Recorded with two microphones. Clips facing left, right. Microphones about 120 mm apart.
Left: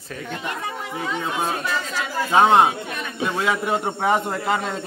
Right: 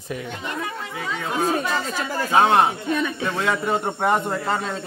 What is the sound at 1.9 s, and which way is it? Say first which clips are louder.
Speech: right 1 dB; 50° right (ahead or behind).